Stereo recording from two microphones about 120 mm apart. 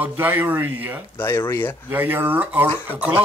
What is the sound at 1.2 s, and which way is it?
Speech, 20° left (ahead or behind).